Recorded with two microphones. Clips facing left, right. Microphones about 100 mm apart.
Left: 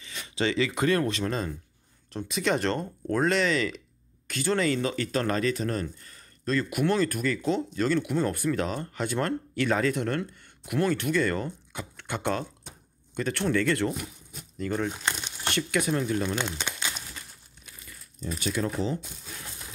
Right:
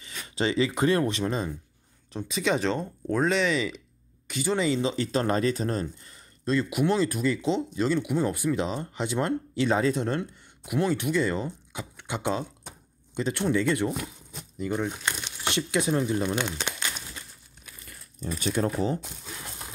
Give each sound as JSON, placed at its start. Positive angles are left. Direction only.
{"t": 0.4, "sound": "speech", "side_deg": -25}
{"t": 2.1, "sound": "speech", "side_deg": 0}
{"t": 18.4, "sound": "speech", "side_deg": -40}